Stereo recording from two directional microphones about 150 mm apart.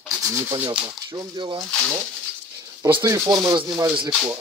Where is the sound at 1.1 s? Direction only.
30° right (ahead or behind).